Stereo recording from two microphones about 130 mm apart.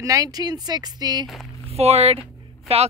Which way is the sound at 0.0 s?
25° right (ahead or behind).